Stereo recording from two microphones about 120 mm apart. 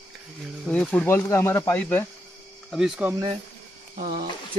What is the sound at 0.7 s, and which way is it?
Speech, 10° left (ahead or behind).